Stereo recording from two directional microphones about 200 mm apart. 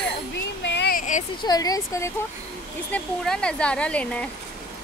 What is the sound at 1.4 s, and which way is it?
Speech, 20° left (ahead or behind).